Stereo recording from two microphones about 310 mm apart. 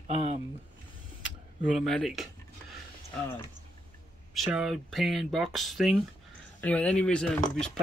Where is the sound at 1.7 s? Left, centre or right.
Centre.